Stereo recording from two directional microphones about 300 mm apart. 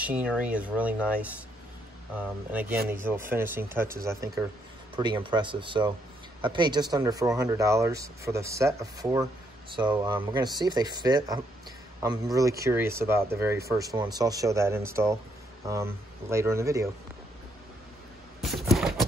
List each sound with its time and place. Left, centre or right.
0.0 s speech: centre
2.5 s speech: centre
18.4 s a sound: centre